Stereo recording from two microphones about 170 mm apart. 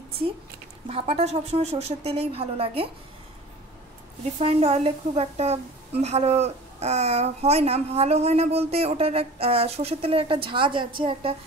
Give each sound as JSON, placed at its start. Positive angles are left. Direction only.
{"t": 0.8, "sound": "speech", "side_deg": -35}
{"t": 4.4, "sound": "a woman's voice", "side_deg": -40}